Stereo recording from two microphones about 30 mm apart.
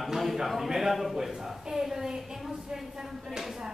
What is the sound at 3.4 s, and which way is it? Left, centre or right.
Speech, centre.